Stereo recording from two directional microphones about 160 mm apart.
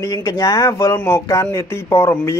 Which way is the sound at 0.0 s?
20° left (ahead or behind).